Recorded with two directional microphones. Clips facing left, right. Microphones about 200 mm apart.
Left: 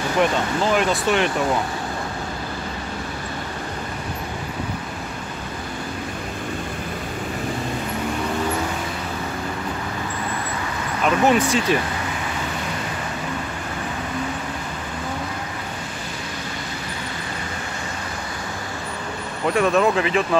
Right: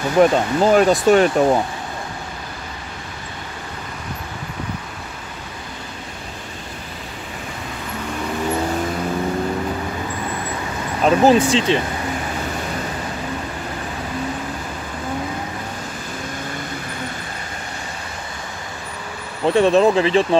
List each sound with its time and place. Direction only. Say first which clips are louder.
0.2 s speech: right 7 dB; 40° right (ahead or behind)
11.0 s speech: right 4 dB; 35° right (ahead or behind)
19.4 s speech: right 4 dB; 30° right (ahead or behind)